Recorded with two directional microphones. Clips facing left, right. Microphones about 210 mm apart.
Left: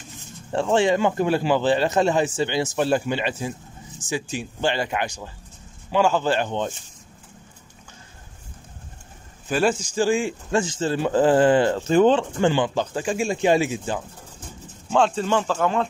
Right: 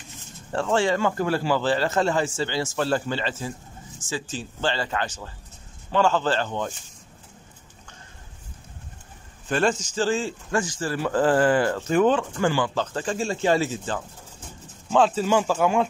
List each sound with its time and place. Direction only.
0.5 s speech: 20° left (ahead or behind)
9.5 s speech: 10° left (ahead or behind)
10.5 s speech: 25° left (ahead or behind)
14.9 s speech: 5° right (ahead or behind)